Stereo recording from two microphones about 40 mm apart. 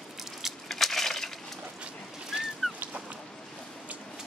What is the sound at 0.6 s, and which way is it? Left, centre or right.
Crushing, centre.